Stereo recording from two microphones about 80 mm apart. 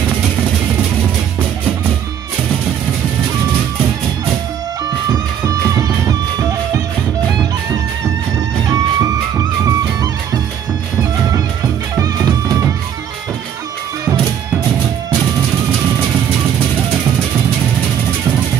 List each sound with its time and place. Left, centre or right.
5.1 s music: right
8.6 s music: right
12.0 s music: right